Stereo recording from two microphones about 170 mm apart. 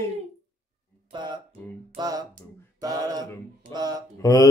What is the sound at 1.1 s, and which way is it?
Music, 25° right (ahead or behind).